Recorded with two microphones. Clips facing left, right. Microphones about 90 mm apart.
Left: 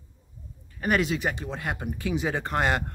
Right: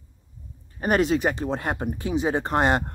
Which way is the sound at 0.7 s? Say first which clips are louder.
Right 4 dB; 35° right (ahead or behind).